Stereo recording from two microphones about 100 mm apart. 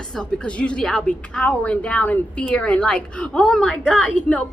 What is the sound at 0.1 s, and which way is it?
A woman's voice, 10° left (ahead or behind).